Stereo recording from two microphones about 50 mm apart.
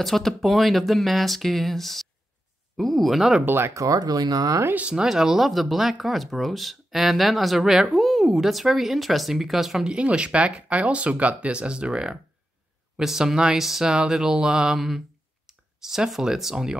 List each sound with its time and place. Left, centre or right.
0.0 s speech: centre
3.4 s speech: right
4.7 s speech: right
5.0 s speech: centre
9.8 s speech: right